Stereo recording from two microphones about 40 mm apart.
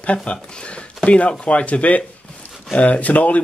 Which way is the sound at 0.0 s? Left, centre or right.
Left.